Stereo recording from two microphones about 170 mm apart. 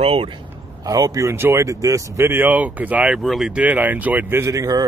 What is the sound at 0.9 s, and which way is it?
Speech, 20° right (ahead or behind).